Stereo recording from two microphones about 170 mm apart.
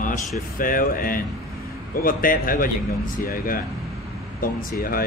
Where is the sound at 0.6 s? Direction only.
55° left (ahead or behind).